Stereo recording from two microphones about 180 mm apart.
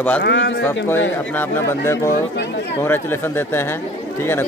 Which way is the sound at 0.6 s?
10° left (ahead or behind).